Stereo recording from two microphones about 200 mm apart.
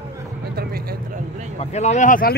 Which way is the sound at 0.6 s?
50° right (ahead or behind).